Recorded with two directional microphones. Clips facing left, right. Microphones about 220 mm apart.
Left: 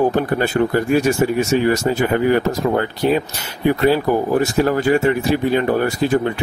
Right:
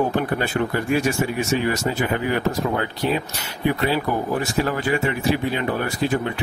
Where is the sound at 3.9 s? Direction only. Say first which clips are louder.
Left 6 dB; 40° left (ahead or behind).